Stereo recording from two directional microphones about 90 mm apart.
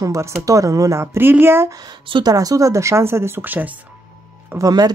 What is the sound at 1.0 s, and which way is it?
Speech, 25° right (ahead or behind).